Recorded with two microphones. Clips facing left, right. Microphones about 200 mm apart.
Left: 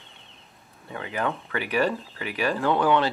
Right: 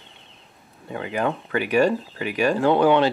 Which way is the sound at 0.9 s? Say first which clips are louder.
Right 4 dB; 15° right (ahead or behind).